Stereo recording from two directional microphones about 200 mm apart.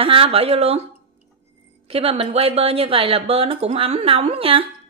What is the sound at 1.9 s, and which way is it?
Speech, 30° right (ahead or behind).